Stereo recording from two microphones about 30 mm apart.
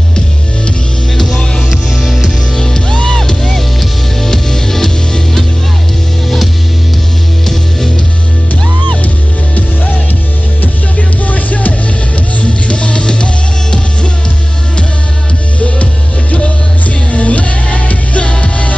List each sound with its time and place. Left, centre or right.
1.1 s music: centre
2.0 s music: centre
2.5 s music: centre
11.2 s music: left
12.4 s music: left
15.6 s music: left